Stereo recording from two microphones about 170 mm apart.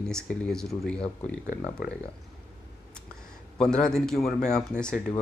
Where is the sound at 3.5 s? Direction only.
5° left (ahead or behind).